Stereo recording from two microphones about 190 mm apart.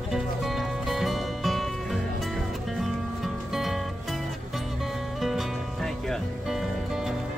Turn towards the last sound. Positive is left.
turn(degrees=0)  # may be behind; listen again after turning